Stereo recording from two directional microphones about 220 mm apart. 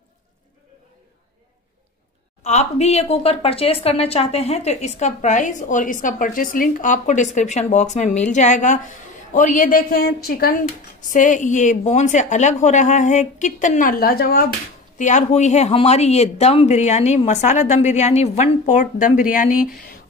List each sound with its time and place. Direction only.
2.4 s speech: 30° left (ahead or behind)
15.0 s speech: 35° left (ahead or behind)